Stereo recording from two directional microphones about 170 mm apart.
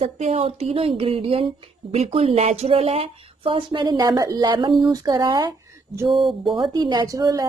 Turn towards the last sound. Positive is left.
turn(degrees=-20)  # may be behind; listen again after turning